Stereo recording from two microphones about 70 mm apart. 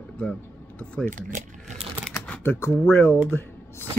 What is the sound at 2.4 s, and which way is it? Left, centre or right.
Speech, left.